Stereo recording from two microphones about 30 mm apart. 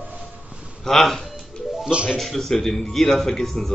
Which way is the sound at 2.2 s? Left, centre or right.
Centre.